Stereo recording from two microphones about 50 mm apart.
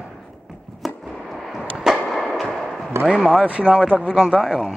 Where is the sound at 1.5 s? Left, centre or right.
Centre.